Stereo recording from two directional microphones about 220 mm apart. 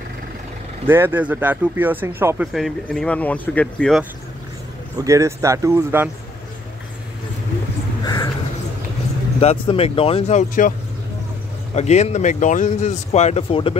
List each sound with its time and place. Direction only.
0.8 s speech: 10° right (ahead or behind)
4.9 s speech: 15° right (ahead or behind)
8.0 s a sound: 15° left (ahead or behind)
9.4 s speech: 25° left (ahead or behind)
11.7 s speech: 30° left (ahead or behind)